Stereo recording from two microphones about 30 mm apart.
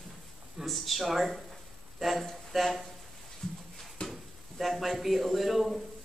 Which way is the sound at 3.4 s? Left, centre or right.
Centre.